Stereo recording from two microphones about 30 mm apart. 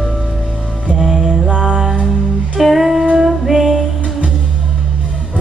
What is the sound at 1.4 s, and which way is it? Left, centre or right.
Music, right.